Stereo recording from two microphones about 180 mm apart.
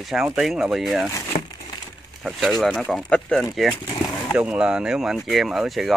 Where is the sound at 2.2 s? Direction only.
Centre (ahead or behind).